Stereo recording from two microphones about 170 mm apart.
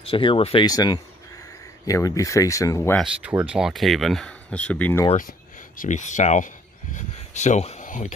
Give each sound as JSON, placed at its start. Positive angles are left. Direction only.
{"t": 0.0, "sound": "speech", "side_deg": 30}
{"t": 0.7, "sound": "a sound", "side_deg": 20}
{"t": 1.9, "sound": "speech", "side_deg": 20}
{"t": 3.0, "sound": "speech", "side_deg": -10}
{"t": 5.8, "sound": "speech", "side_deg": 45}